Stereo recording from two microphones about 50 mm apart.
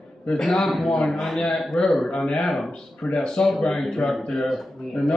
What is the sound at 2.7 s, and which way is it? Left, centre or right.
Speech, centre.